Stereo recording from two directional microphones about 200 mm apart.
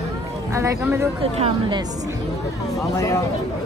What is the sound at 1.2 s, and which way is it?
Speech, 30° right (ahead or behind).